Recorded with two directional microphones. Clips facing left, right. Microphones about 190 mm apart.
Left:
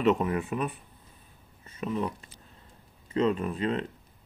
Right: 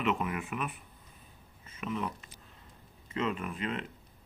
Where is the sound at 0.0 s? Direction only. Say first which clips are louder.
Left 7 dB; 35° left (ahead or behind).